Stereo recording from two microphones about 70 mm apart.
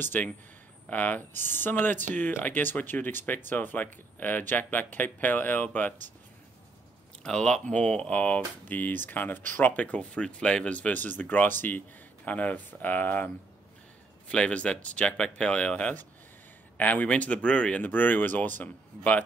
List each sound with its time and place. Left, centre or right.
0.0 s speech: left
7.2 s speech: centre
14.3 s speech: centre